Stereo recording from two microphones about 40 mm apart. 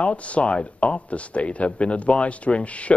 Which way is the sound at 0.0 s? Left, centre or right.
Left.